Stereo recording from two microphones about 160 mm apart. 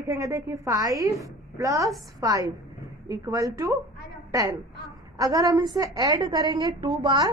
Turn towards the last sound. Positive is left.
turn(degrees=-30)  # may be behind; listen again after turning